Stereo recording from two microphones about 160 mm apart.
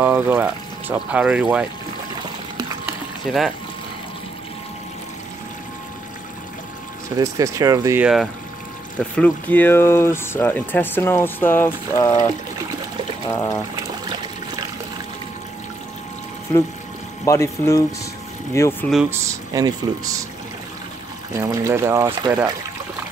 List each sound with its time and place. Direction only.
0.0 s speech: 15° right (ahead or behind)
3.3 s speech: centre (ahead or behind)
7.2 s speech: 20° right (ahead or behind)
8.0 s speech: centre (ahead or behind)
9.1 s speech: 10° left (ahead or behind)
13.3 s speech: 15° left (ahead or behind)
17.2 s speech: 20° left (ahead or behind)
19.0 s speech: 20° right (ahead or behind)
21.3 s speech: 20° right (ahead or behind)